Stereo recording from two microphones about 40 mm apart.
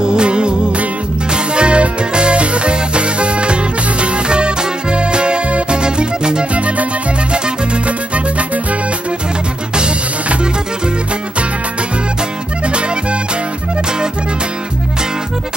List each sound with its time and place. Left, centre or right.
0.0 s music: right
6.5 s music: right